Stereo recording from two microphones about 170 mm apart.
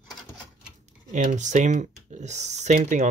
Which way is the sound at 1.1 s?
45° right (ahead or behind).